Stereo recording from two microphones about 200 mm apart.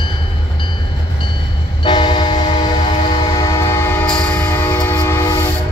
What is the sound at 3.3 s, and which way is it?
Train, 15° left (ahead or behind).